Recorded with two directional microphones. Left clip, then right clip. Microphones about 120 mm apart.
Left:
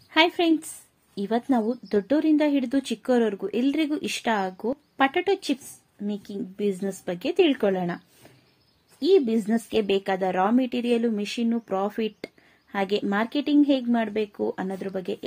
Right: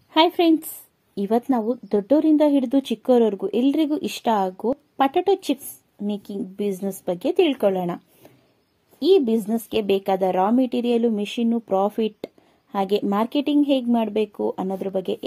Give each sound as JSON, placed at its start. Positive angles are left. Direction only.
{"t": 0.1, "sound": "a woman's voice", "side_deg": -45}
{"t": 9.0, "sound": "a woman's voice", "side_deg": -40}